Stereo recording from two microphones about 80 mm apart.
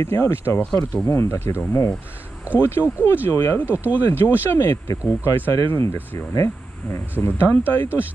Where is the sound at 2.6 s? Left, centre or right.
Left.